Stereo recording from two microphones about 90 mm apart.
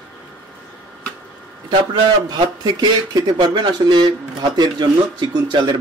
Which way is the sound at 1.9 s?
55° right (ahead or behind).